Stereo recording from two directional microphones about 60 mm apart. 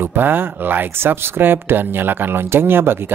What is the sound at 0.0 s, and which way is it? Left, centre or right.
Speech, right.